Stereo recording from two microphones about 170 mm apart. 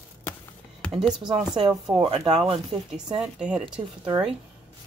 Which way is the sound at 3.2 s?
5° right (ahead or behind).